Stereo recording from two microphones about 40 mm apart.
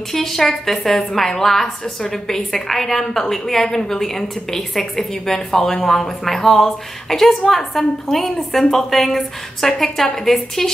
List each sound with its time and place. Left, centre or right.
0.1 s a woman's voice: centre